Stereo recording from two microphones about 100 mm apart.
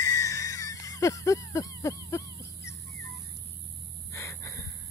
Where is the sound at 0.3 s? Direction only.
35° left (ahead or behind).